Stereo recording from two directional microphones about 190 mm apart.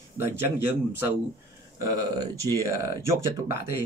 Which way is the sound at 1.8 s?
20° right (ahead or behind).